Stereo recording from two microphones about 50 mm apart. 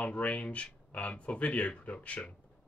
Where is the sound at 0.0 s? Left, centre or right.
Left.